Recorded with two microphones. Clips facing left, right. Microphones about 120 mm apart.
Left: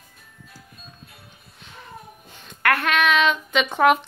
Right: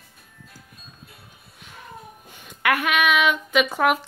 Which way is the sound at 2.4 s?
10° right (ahead or behind).